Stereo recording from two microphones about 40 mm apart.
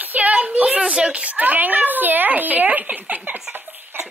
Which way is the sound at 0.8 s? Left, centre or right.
Right.